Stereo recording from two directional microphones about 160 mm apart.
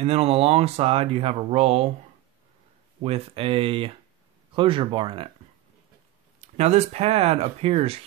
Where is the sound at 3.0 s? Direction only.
35° right (ahead or behind).